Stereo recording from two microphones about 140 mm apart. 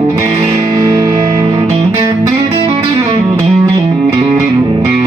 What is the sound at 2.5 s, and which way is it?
Music, 40° right (ahead or behind).